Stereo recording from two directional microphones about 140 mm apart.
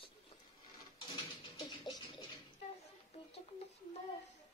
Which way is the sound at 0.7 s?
30° left (ahead or behind).